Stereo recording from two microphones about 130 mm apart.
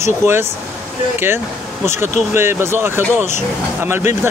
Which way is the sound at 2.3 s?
20° right (ahead or behind).